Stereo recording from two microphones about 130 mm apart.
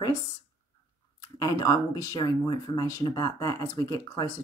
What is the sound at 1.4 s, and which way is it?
Speech, 30° left (ahead or behind).